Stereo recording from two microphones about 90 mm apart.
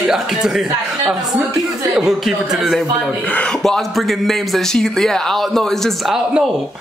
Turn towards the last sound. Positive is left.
turn(degrees=0)  # may be behind; listen again after turning